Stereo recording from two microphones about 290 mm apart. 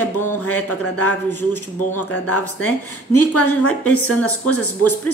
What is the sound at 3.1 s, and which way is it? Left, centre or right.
Speech, left.